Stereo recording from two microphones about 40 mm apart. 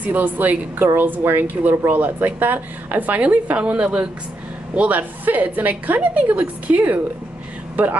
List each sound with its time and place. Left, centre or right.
0.0 s a woman's voice: right
1.6 s a woman's voice: right
4.7 s a woman's voice: right